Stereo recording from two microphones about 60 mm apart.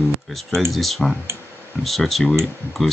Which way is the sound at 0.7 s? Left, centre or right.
Centre.